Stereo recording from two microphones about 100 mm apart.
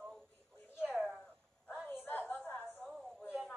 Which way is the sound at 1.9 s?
20° left (ahead or behind).